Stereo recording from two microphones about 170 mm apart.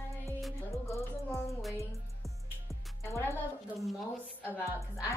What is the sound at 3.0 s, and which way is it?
Music, 15° left (ahead or behind).